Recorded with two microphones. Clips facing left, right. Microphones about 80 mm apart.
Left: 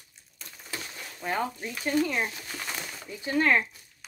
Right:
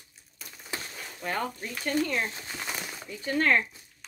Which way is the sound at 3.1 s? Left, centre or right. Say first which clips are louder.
Left 1 dB; centre.